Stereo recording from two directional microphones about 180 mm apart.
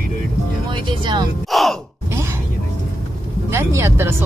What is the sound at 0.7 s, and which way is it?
Speech, 25° right (ahead or behind).